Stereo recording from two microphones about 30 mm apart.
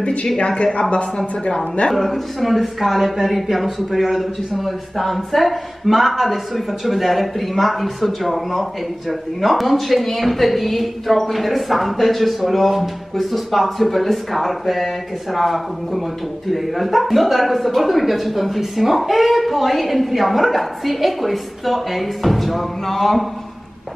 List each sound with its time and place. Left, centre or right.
0.0 s a woman's voice: left
2.0 s speech: centre